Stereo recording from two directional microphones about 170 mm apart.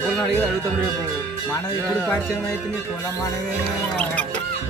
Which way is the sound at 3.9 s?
10° left (ahead or behind).